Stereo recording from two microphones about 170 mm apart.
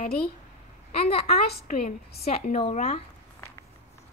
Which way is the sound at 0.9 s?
35° left (ahead or behind).